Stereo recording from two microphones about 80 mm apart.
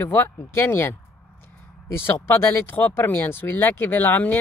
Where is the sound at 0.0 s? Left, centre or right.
Left.